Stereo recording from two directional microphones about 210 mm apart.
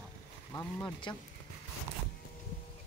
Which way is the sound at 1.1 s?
20° left (ahead or behind).